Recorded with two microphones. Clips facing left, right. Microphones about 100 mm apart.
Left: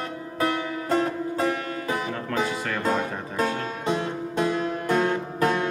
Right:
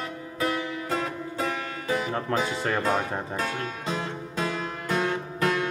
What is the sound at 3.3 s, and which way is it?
Music, 40° left (ahead or behind).